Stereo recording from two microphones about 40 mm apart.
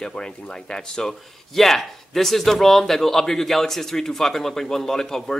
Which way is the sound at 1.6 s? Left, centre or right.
Centre.